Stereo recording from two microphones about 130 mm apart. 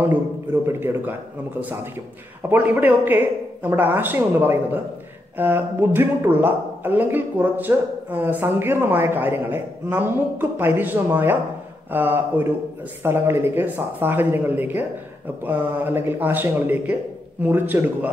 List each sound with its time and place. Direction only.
0.7 s speech: 15° right (ahead or behind)
2.5 s speech: 15° right (ahead or behind)